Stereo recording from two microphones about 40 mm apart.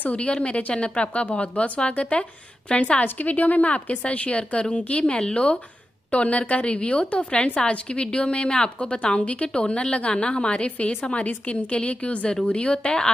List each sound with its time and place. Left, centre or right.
0.0 s a woman's voice: left
3.2 s a woman's voice: left
5.1 s a woman's voice: left
6.1 s a woman's voice: left